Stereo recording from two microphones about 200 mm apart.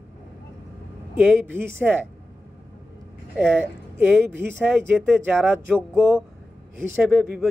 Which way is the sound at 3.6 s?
10° right (ahead or behind).